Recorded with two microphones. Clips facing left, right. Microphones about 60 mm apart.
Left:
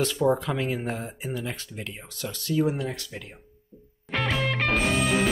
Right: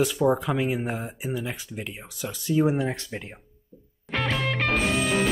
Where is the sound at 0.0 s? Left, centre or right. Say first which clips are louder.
Right 1 dB; centre.